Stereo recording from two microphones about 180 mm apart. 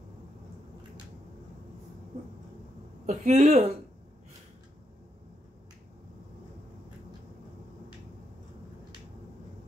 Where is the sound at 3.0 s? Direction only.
40° right (ahead or behind).